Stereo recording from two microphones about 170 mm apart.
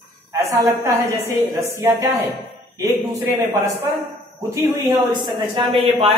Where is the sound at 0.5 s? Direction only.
15° right (ahead or behind).